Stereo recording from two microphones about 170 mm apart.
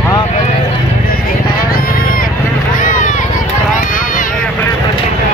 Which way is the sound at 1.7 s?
60° left (ahead or behind).